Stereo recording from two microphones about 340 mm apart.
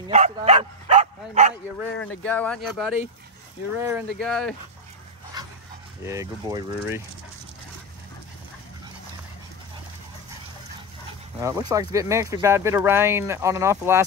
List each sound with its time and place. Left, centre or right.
0.1 s bow-wow: centre
2.2 s speech: centre
6.0 s speech: centre
11.3 s speech: centre